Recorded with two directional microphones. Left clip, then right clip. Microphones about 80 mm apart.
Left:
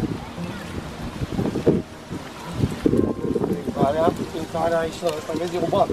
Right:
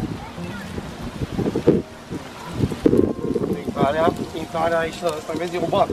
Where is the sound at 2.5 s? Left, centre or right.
Right.